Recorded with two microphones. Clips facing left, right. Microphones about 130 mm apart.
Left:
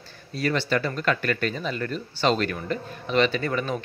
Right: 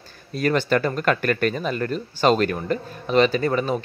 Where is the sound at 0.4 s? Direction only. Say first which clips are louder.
Right 4 dB; 50° right (ahead or behind).